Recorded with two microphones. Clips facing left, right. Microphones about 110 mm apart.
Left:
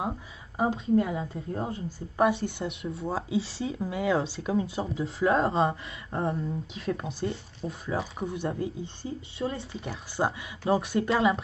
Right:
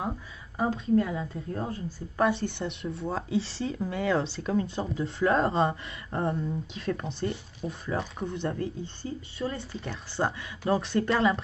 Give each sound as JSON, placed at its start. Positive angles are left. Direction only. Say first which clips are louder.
{"t": 0.6, "sound": "a woman's voice", "louder": "left 1 dB", "side_deg": 20}
{"t": 2.3, "sound": "speech", "louder": "even", "side_deg": 0}